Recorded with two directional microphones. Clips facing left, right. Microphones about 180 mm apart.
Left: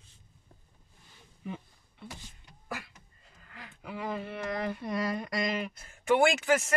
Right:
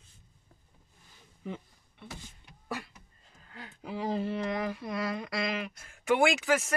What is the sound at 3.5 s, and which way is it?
Speech, 30° right (ahead or behind).